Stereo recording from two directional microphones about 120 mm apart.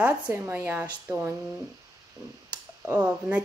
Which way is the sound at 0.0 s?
15° right (ahead or behind).